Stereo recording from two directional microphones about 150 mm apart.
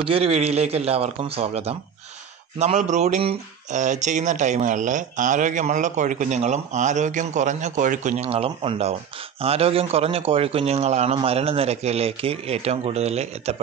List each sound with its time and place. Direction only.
0.0 s a man's voice: 40° right (ahead or behind)